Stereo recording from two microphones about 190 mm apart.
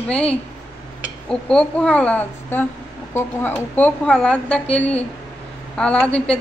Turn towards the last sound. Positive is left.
turn(degrees=5)  # may be behind; listen again after turning